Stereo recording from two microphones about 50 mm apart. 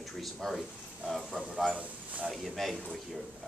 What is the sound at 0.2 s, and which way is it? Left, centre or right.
Speech, centre.